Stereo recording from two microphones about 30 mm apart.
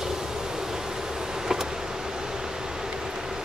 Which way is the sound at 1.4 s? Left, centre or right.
Centre.